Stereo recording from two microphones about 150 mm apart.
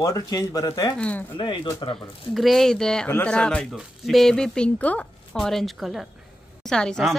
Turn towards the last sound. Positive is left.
turn(degrees=5)  # may be behind; listen again after turning